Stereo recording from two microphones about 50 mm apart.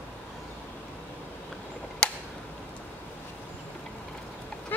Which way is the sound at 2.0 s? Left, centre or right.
Centre.